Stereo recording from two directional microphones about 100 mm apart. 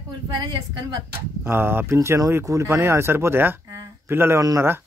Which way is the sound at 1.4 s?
20° right (ahead or behind).